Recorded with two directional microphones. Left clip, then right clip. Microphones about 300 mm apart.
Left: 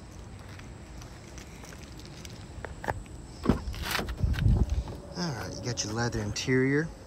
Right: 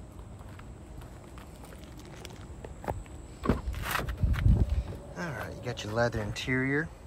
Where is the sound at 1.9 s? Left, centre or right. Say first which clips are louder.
Left 1 dB; right.